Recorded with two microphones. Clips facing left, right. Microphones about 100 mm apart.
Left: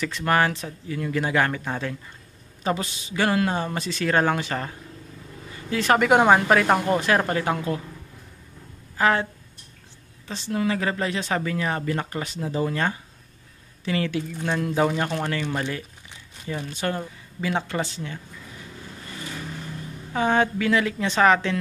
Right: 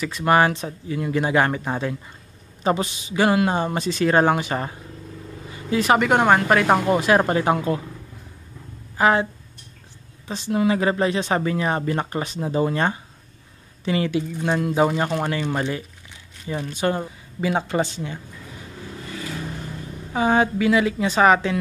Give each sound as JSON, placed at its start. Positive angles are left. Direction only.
{"t": 0.2, "sound": "speech", "side_deg": -20}
{"t": 6.0, "sound": "speech", "side_deg": 5}
{"t": 8.9, "sound": "speech", "side_deg": -20}
{"t": 20.1, "sound": "speech", "side_deg": -10}